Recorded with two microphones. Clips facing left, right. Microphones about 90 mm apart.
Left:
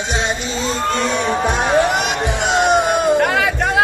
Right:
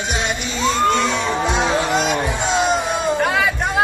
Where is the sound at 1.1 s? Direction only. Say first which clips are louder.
Left 2 dB; 50° left (ahead or behind).